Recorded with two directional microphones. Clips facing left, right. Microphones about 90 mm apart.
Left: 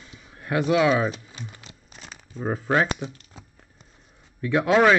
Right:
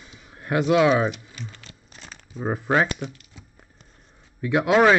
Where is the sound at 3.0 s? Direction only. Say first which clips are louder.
Even; 40° left (ahead or behind).